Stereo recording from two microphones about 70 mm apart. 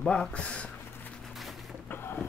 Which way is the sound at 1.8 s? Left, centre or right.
Left.